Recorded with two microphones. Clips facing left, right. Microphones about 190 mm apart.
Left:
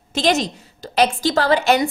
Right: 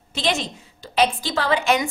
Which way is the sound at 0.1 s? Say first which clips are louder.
Left 6 dB; 40° left (ahead or behind).